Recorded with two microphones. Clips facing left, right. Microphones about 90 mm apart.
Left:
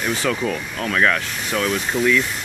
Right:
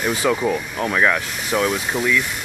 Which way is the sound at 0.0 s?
15° right (ahead or behind).